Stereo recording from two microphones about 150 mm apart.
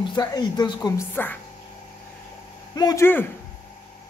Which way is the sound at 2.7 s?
25° left (ahead or behind).